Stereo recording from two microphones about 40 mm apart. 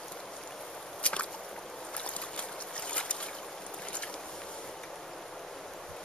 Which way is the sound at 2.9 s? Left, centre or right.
Left.